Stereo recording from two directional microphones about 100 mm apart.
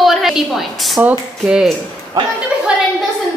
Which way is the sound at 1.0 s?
10° right (ahead or behind).